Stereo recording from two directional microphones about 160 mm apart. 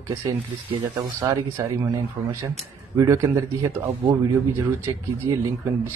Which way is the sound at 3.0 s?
20° right (ahead or behind).